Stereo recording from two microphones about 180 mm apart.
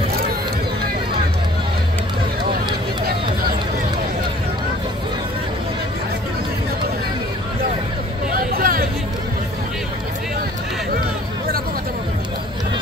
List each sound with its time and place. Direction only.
8.3 s hubbub: 55° right (ahead or behind)